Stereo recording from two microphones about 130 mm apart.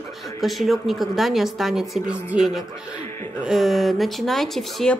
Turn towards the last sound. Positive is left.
turn(degrees=0)  # may be behind; listen again after turning